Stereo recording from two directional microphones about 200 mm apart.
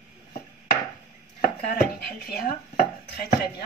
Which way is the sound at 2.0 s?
50° left (ahead or behind).